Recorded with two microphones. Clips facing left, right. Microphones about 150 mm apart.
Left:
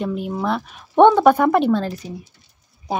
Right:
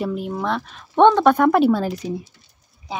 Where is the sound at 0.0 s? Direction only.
Centre (ahead or behind); by 2.1 s 15° right (ahead or behind).